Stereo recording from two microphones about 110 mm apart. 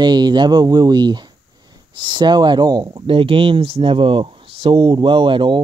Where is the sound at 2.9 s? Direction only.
55° right (ahead or behind).